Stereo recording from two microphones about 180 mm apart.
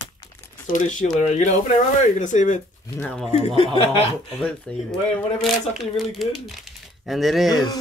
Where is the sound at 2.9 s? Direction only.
5° left (ahead or behind).